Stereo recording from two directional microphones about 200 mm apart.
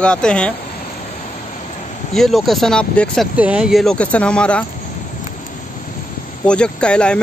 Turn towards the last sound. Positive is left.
turn(degrees=5)  # may be behind; listen again after turning